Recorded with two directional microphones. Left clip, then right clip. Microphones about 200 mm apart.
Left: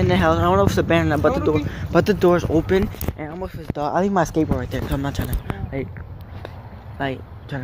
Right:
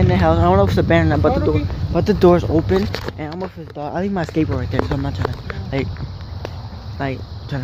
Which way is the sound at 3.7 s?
15° left (ahead or behind).